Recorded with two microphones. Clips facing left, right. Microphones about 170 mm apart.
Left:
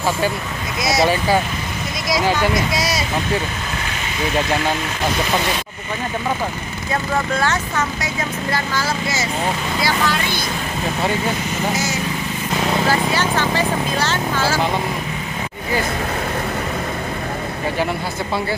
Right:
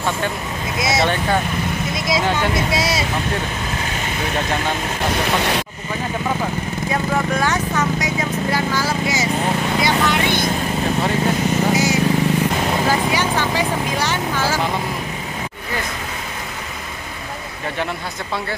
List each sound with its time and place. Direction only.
0.7 s speech: 25° right (ahead or behind)
1.0 s speech: 5° left (ahead or behind)
2.7 s speech: 25° right (ahead or behind)
6.9 s speech: 10° right (ahead or behind)
11.7 s vehicle: 10° right (ahead or behind)
12.8 s speech: 15° right (ahead or behind)